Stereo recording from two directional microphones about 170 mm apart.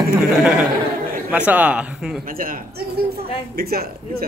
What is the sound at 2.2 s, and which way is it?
A man's voice, 55° right (ahead or behind).